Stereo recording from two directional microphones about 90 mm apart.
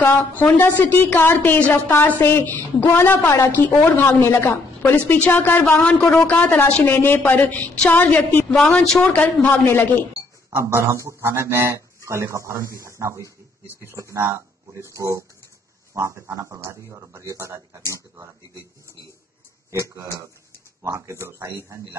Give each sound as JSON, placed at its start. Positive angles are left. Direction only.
{"t": 0.0, "sound": "a woman's voice", "side_deg": 20}
{"t": 10.5, "sound": "speech", "side_deg": -30}
{"t": 20.8, "sound": "speech", "side_deg": -35}